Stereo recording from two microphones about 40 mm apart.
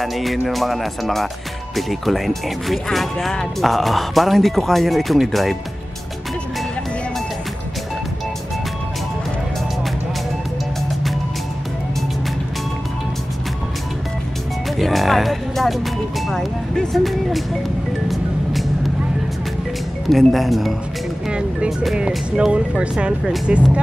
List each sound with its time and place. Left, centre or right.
0.0 s speech: centre
14.8 s music: centre
16.9 s speech: centre
18.1 s music: centre
20.1 s speech: centre
21.3 s music: right
22.5 s speech: right